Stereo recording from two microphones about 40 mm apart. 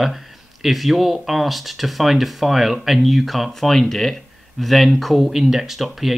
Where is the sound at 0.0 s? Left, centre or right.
Centre.